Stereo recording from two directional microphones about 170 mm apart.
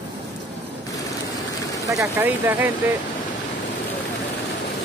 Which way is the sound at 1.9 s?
15° right (ahead or behind).